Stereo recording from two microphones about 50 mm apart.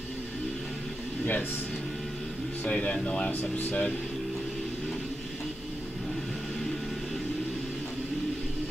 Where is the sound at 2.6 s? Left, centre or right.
Left.